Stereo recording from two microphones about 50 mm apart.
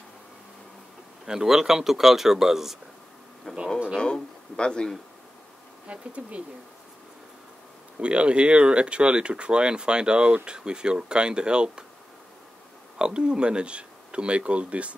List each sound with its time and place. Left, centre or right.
1.2 s speech: centre
3.5 s a sound: centre
4.0 s speech: centre
5.9 s speech: right
8.0 s speech: right
13.0 s speech: right